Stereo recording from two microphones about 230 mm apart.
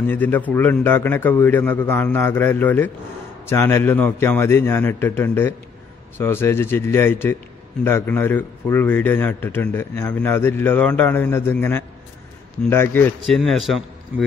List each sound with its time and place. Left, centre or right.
0.0 s a man's voice: centre